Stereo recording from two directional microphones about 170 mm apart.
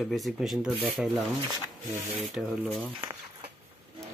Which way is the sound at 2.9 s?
30° right (ahead or behind).